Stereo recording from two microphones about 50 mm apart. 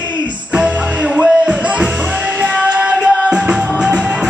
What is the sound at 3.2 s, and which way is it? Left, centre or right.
Music, centre.